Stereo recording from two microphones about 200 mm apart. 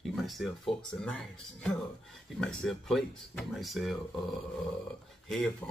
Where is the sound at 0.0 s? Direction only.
Centre (ahead or behind).